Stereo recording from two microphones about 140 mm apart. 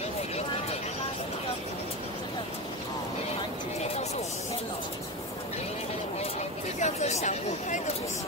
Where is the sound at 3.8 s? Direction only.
50° left (ahead or behind).